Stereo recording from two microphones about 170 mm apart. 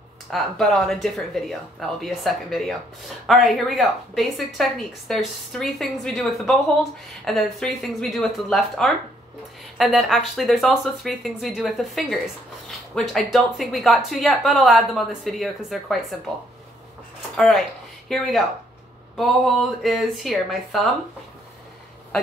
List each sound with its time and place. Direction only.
0.3 s speech: centre (ahead or behind)
17.4 s speech: centre (ahead or behind)